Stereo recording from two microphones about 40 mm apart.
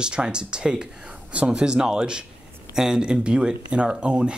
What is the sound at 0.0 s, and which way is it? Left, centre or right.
Speech, right.